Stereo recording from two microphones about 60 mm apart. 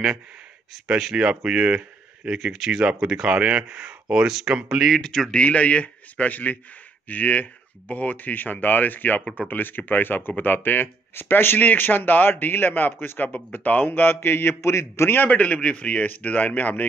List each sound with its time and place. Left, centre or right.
0.8 s speech: centre
1.1 s speech: centre
1.8 s speech: centre
3.3 s speech: centre
5.0 s speech: centre
5.4 s speech: left
15.2 s speech: left